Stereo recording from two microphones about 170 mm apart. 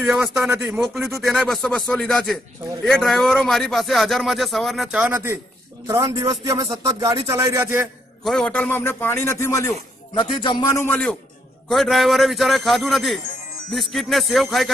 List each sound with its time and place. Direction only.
0.0 s a man's voice: 5° right (ahead or behind)
8.2 s a man's voice: centre (ahead or behind)
10.1 s a man's voice: 30° left (ahead or behind)
10.6 s a man's voice: 15° left (ahead or behind)